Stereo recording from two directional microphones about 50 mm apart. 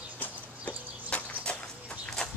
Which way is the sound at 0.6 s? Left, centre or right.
Left.